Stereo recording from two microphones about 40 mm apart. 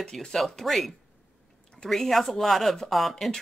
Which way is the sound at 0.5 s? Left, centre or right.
Centre.